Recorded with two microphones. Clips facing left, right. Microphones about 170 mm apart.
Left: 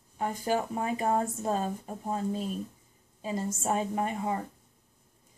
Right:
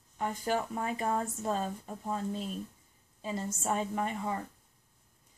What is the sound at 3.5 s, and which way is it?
Speech, 20° left (ahead or behind).